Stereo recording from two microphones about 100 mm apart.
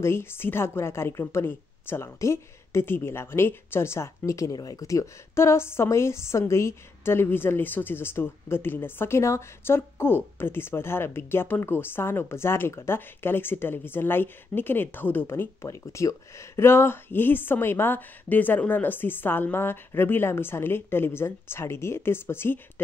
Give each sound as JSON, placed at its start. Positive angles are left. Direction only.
{"t": 0.0, "sound": "a woman's voice", "side_deg": 25}